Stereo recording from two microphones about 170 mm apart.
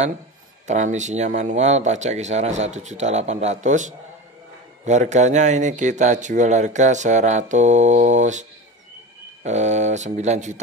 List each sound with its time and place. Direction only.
0.7 s speech: 45° right (ahead or behind)